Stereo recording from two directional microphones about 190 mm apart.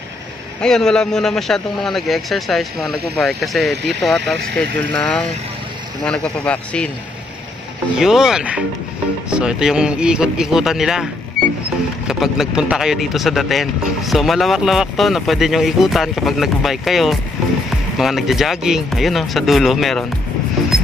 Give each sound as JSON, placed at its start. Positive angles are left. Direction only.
{"t": 0.6, "sound": "speech", "side_deg": 5}
{"t": 3.7, "sound": "speech", "side_deg": -65}
{"t": 4.0, "sound": "speech", "side_deg": 0}
{"t": 8.0, "sound": "speech", "side_deg": -5}
{"t": 12.1, "sound": "speech", "side_deg": 0}